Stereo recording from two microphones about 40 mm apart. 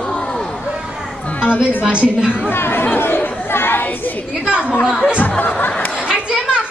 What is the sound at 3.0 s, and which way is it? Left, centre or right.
Chatter, left.